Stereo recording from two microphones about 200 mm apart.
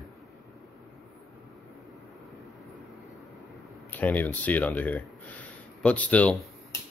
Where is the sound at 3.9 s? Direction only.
10° left (ahead or behind).